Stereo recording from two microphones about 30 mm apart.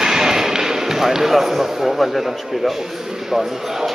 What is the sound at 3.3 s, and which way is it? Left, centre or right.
Speech, centre.